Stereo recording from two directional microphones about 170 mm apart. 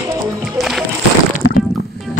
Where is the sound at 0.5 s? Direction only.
Centre (ahead or behind).